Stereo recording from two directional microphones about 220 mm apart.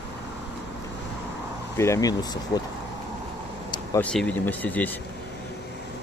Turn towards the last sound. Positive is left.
turn(degrees=5)  # may be behind; listen again after turning